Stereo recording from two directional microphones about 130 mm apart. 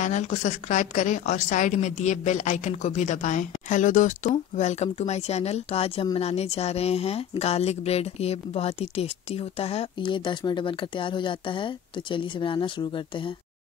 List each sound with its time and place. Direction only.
0.0 s a woman's voice: 65° left (ahead or behind); by 13.3 s 40° left (ahead or behind)